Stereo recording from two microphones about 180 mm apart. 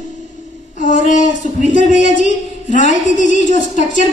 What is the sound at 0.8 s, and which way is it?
A woman's voice, 45° left (ahead or behind).